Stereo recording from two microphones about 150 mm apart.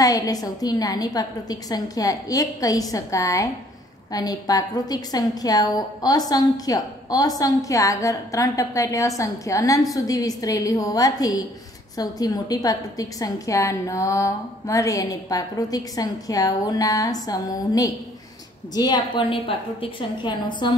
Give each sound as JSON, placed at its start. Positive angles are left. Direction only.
{"t": 0.0, "sound": "a woman's voice", "side_deg": 25}